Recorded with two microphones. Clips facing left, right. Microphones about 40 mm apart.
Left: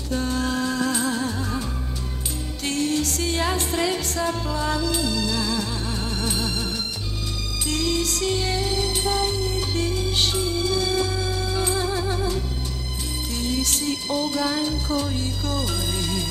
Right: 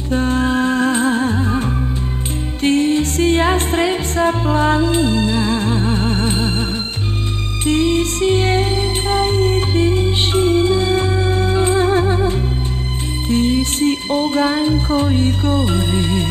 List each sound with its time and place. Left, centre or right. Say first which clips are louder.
0.1 s music: right 8 dB; right
7.6 s music: right 9 dB; right